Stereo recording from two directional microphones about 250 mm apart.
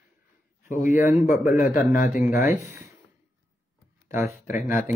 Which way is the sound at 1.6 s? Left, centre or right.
Centre.